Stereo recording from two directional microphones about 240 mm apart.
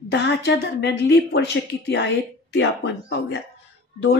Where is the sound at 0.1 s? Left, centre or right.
Left.